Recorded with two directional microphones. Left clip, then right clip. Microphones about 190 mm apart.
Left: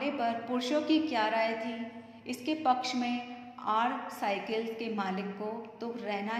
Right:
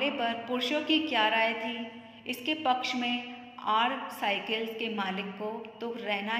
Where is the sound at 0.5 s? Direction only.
5° left (ahead or behind).